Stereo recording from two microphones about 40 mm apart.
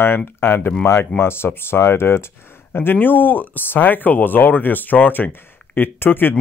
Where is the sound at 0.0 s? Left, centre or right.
Left.